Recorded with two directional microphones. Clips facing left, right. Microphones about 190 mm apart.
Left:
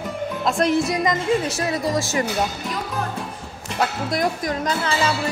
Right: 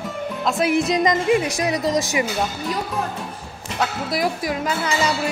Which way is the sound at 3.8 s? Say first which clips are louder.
Even; 5° right (ahead or behind).